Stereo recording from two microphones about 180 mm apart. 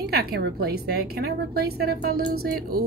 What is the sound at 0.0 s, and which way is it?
A woman's voice, 60° right (ahead or behind).